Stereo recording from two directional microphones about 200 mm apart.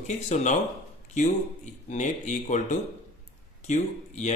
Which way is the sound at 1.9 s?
35° left (ahead or behind).